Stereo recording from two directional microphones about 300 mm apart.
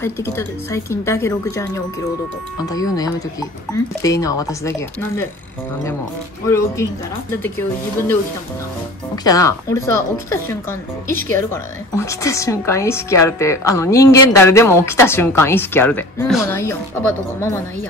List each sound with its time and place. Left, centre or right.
0.0 s a woman's voice: centre
6.4 s a woman's voice: centre
9.1 s a woman's voice: centre